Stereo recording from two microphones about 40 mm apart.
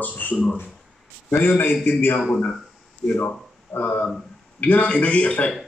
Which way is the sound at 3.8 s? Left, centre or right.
Left.